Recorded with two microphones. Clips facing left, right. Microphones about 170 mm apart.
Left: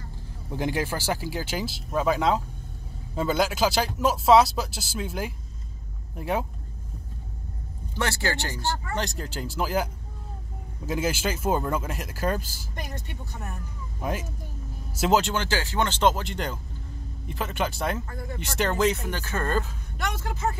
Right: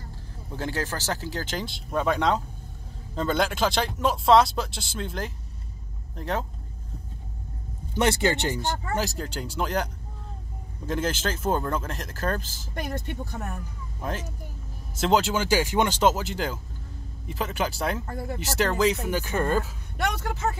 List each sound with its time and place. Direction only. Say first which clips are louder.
0.5 s speech: left 3 dB; 15° left (ahead or behind)
8.0 s speech: right 5 dB; 20° right (ahead or behind)
8.9 s speech: right 2 dB; centre (ahead or behind)
10.9 s speech: left 1 dB; 10° left (ahead or behind)
15.0 s speech: even; centre (ahead or behind); by 19.6 s 15° right (ahead or behind)
20.0 s speech: right 3 dB; 65° right (ahead or behind)